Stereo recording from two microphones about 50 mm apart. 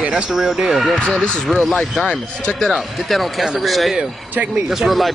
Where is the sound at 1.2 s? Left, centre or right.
Centre.